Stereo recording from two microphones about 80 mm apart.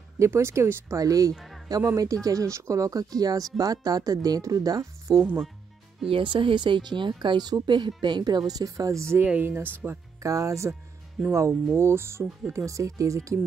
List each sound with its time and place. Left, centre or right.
0.2 s speech: right
1.0 s speech: right
1.3 s music: centre
1.9 s speech: right
6.1 s speech: right
9.2 s speech: right
10.2 s speech: right